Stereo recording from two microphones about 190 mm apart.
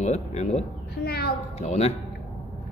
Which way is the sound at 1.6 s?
35° left (ahead or behind).